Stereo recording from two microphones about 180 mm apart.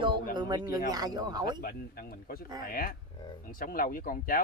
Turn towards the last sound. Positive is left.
turn(degrees=50)  # may be behind; listen again after turning